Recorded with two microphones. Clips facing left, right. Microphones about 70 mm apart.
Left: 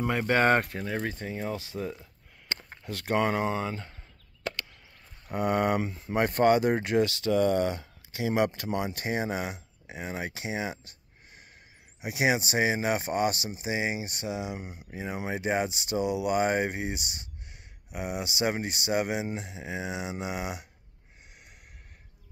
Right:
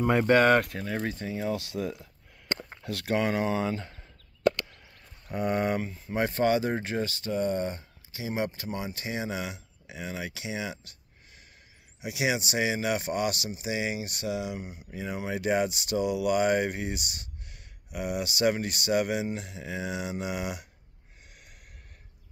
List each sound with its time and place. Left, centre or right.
0.0 s speech: centre
0.4 s speech: left
0.7 s speech: centre
1.0 s speech: left
1.7 s speech: centre
3.2 s speech: left
5.3 s speech: left
5.8 s speech: left
6.1 s speech: left
12.0 s speech: left